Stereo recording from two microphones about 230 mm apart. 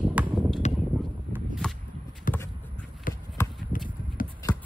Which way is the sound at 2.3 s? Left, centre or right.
Left.